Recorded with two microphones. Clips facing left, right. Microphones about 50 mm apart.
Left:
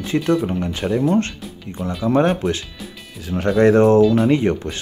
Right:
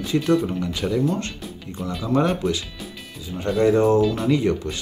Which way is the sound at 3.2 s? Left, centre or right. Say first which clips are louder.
Left 5 dB; left.